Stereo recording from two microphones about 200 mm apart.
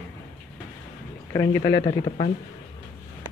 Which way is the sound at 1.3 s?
15° left (ahead or behind).